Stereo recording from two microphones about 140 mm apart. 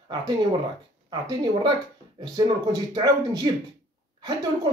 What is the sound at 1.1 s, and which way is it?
A woman's voice, 35° right (ahead or behind).